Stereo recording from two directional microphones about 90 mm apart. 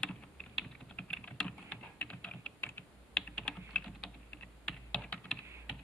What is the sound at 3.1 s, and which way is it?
Computer keyboard, 10° left (ahead or behind).